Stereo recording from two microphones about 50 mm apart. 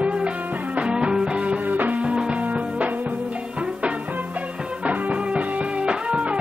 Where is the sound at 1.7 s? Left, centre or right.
Right.